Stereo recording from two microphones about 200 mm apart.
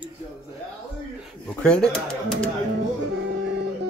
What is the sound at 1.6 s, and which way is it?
Speech, 5° left (ahead or behind).